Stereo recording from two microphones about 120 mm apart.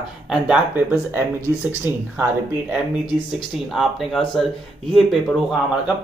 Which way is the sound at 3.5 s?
Centre (ahead or behind).